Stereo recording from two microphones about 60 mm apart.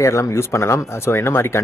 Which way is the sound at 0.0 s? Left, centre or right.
Left.